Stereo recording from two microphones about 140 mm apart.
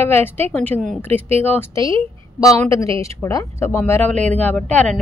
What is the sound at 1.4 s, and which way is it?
Speech, 15° left (ahead or behind).